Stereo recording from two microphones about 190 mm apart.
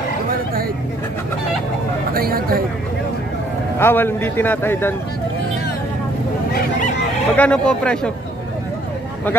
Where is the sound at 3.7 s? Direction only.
10° left (ahead or behind).